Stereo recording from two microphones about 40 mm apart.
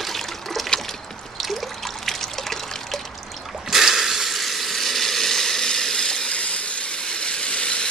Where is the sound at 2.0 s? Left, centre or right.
Centre.